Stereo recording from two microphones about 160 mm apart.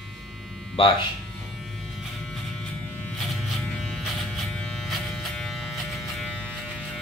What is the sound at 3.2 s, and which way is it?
Electric shaver, centre (ahead or behind).